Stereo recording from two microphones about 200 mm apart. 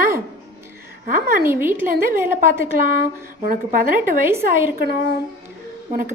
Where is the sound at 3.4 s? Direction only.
45° right (ahead or behind).